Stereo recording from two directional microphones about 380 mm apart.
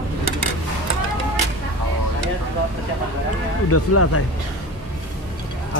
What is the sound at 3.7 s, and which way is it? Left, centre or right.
Speech, left.